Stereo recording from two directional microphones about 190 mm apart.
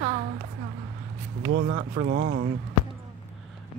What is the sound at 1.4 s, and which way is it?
Speech, 50° right (ahead or behind).